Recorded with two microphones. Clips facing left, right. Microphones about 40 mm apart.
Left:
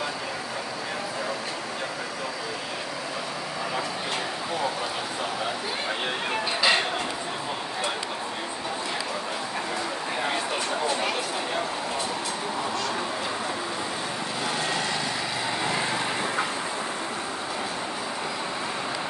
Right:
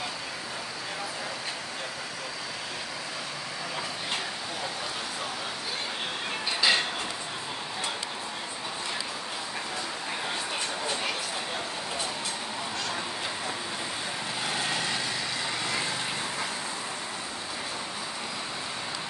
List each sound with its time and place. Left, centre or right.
6.6 s a sound: centre
14.6 s lawn mower: centre
15.6 s vehicle: left